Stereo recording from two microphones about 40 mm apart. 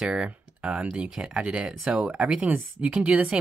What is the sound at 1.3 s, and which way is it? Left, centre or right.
Speech, right.